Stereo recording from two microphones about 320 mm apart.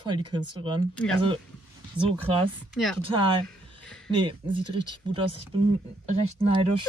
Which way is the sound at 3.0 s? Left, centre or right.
Centre.